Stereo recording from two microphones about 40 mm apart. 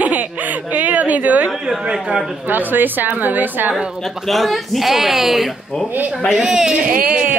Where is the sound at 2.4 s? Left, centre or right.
Right.